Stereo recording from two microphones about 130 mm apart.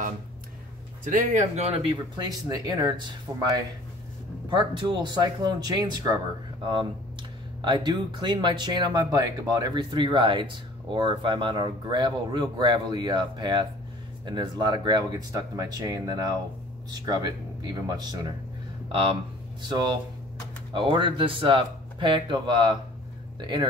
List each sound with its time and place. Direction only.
1.0 s speech: 80° right; by 1.9 s 55° right (ahead or behind)
2.2 s speech: 30° right (ahead or behind)
19.6 s speech: 35° right (ahead or behind)